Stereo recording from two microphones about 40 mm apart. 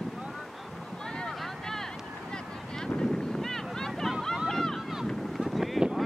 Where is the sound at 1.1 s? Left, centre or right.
Left.